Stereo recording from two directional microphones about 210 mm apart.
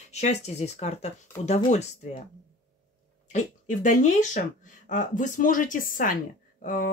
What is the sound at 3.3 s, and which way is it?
Speech, 35° left (ahead or behind).